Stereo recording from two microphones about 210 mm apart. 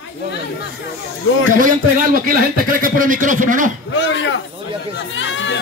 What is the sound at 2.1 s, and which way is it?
Speech, 45° right (ahead or behind).